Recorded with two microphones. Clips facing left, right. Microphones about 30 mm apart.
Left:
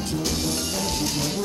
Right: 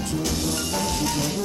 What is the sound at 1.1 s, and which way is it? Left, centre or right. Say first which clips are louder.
Music: right 1 dB; left.